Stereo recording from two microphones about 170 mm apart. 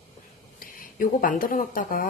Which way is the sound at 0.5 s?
55° left (ahead or behind).